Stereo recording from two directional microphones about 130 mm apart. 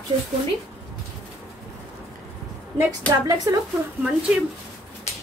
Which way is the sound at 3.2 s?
30° right (ahead or behind).